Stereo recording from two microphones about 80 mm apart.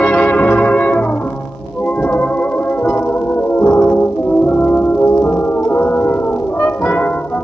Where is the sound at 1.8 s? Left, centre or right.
Centre.